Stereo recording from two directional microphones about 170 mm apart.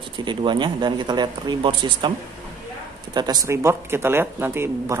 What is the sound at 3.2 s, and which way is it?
Speech, 20° right (ahead or behind).